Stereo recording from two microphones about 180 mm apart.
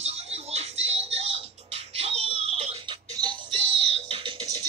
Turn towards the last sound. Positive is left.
turn(degrees=-25)  # may be behind; listen again after turning